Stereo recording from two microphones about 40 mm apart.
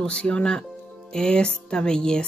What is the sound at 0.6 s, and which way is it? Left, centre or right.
Speech, centre.